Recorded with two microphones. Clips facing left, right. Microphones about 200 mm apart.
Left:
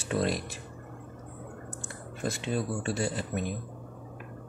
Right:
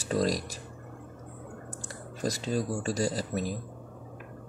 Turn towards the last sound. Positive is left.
turn(degrees=-35)  # may be behind; listen again after turning